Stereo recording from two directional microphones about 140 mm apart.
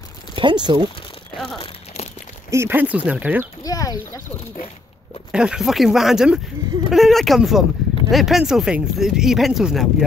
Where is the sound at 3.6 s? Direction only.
25° left (ahead or behind).